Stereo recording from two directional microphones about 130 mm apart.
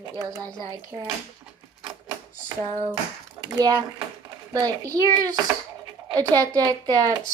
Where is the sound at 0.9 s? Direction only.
25° right (ahead or behind).